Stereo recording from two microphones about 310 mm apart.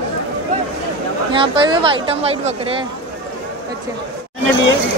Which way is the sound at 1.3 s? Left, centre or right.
Centre.